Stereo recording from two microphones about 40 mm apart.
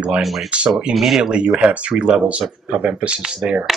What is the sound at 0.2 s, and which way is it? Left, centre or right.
Speech, centre.